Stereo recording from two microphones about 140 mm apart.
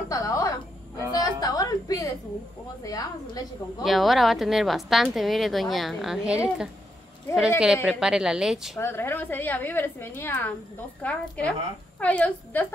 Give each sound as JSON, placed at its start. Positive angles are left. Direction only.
{"t": 0.1, "sound": "music", "side_deg": 25}
{"t": 1.1, "sound": "a sound", "side_deg": 25}
{"t": 2.8, "sound": "a woman's voice", "side_deg": 25}
{"t": 3.8, "sound": "a woman's voice", "side_deg": 0}
{"t": 8.7, "sound": "a woman's voice", "side_deg": 15}